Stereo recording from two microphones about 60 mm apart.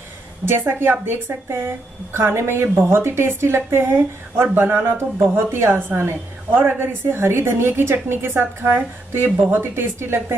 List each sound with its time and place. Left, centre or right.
0.5 s a woman's voice: right